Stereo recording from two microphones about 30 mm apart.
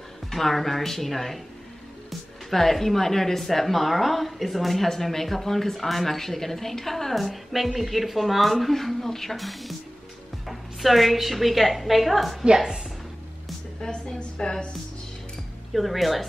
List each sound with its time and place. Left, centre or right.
0.3 s speech: centre
2.5 s a woman's voice: centre
10.4 s music: centre
11.1 s a woman's voice: centre
13.7 s a woman's voice: centre
15.7 s a woman's voice: centre